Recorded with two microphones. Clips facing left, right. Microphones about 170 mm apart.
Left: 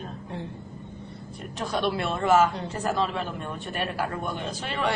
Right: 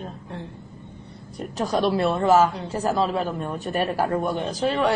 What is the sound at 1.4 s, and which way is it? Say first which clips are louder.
A man's voice: right 5 dB; 40° right (ahead or behind).